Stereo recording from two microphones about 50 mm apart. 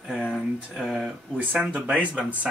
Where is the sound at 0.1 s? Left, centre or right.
Centre.